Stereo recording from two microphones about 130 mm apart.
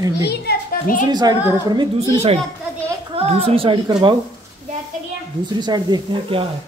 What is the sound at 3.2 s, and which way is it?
Speech, 50° right (ahead or behind).